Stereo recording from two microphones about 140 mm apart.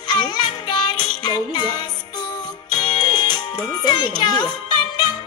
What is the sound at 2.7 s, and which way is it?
Music, 30° left (ahead or behind).